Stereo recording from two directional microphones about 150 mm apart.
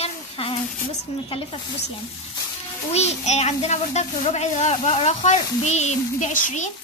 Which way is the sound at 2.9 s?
45° left (ahead or behind).